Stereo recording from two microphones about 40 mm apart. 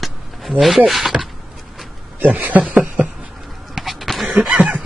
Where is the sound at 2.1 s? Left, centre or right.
Right.